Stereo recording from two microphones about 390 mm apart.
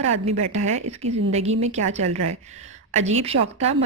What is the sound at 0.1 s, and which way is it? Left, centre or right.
A woman's voice, centre.